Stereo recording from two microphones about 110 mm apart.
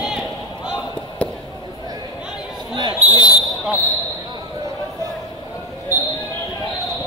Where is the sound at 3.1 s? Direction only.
35° left (ahead or behind).